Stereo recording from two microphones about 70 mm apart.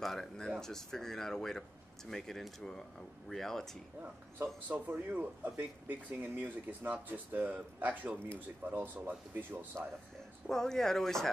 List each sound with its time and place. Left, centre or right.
0.0 s speech: centre
4.4 s speech: right
10.4 s speech: centre